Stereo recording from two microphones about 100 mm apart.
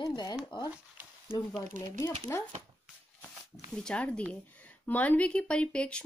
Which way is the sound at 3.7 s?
10° left (ahead or behind).